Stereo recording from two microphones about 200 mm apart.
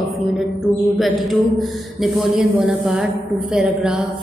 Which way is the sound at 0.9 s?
Centre (ahead or behind).